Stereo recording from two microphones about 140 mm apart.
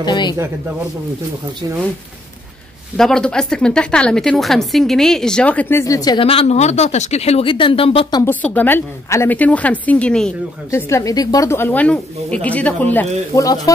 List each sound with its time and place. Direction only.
0.0 s speech: 30° left (ahead or behind)
3.0 s speech: 5° left (ahead or behind); by 6.2 s 30° left (ahead or behind)
6.2 s speech: 50° left (ahead or behind)
8.3 s speech: 10° left (ahead or behind)
10.7 s speech: 20° left (ahead or behind)
13.3 s speech: 25° left (ahead or behind)